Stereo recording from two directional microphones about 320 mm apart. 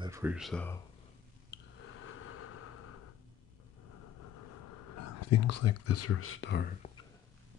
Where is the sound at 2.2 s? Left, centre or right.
Left.